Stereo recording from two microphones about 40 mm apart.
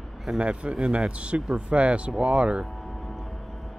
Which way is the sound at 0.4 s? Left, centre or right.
Right.